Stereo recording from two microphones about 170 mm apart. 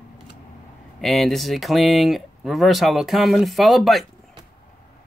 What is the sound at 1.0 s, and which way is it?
Speech, centre (ahead or behind).